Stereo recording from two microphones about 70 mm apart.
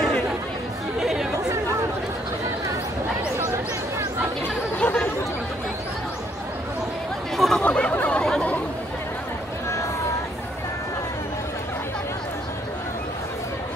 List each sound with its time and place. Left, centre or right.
0.9 s chatter: centre
4.7 s chatter: centre
7.3 s chatter: centre
7.6 s a sound: centre
8.2 s chatter: centre